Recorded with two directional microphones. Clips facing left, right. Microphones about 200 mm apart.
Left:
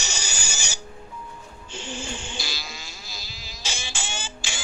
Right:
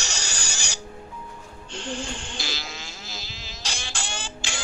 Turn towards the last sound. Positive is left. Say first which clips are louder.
# right 1 dB
turn(degrees=5)  # may be behind; listen again after turning